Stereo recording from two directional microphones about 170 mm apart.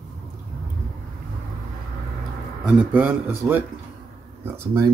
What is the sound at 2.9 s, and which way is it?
Speech, 10° right (ahead or behind).